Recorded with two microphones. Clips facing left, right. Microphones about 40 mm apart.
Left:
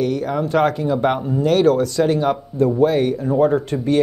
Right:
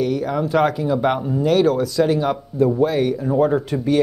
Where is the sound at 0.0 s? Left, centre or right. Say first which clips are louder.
Even; centre.